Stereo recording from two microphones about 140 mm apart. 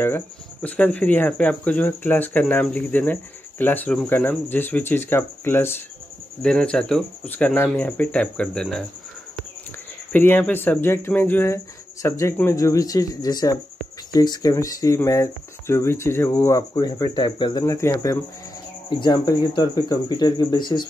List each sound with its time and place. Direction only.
0.0 s speech: 15° left (ahead or behind)
10.1 s speech: 15° left (ahead or behind)
18.9 s speech: 30° left (ahead or behind)